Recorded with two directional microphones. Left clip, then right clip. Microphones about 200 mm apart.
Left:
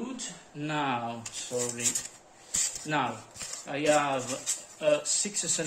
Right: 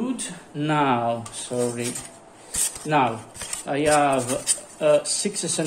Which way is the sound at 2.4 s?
20° right (ahead or behind).